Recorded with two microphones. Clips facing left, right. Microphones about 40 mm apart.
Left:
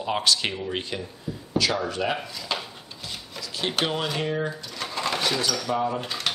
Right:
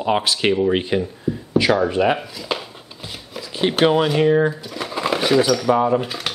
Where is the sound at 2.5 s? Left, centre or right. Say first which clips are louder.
Right 5 dB; centre.